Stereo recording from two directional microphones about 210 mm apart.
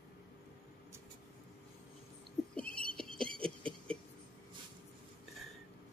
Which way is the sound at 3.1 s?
25° right (ahead or behind).